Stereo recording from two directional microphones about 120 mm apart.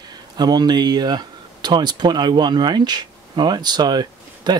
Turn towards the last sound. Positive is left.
turn(degrees=-35)  # may be behind; listen again after turning